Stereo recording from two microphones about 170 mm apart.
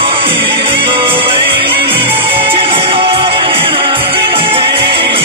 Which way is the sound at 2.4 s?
30° right (ahead or behind).